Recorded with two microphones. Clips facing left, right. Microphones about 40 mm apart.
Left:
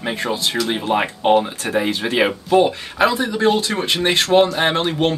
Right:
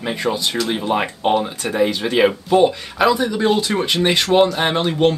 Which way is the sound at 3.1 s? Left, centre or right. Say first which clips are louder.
Right 2 dB; left.